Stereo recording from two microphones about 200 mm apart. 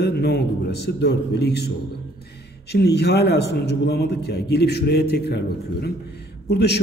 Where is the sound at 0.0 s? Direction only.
55° left (ahead or behind).